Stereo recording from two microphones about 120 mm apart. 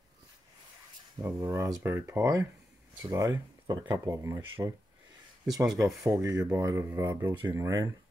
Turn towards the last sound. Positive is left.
turn(degrees=-30)  # may be behind; listen again after turning